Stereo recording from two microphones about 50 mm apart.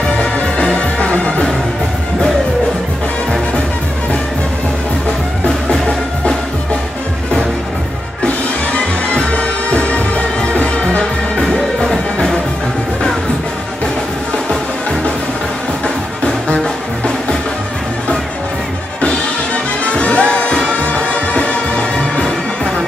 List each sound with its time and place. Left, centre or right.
0.2 s music: left
8.7 s music: left
11.4 s music: centre
16.4 s music: centre
18.9 s music: left